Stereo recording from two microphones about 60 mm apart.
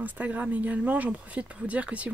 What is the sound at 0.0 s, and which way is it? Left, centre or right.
Speech, right.